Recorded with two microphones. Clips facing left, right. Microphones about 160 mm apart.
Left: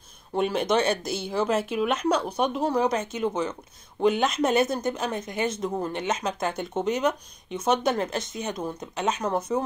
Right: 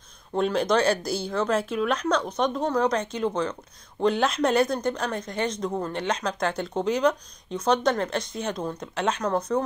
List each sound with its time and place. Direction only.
0.3 s speech: 5° left (ahead or behind)
9.2 s speech: 25° left (ahead or behind)